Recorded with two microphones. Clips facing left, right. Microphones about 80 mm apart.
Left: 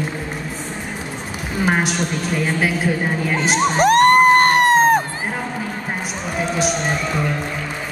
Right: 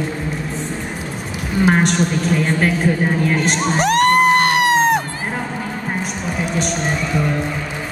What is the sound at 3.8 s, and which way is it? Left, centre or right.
Music, left.